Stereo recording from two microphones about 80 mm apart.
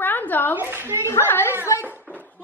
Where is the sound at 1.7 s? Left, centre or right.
Left.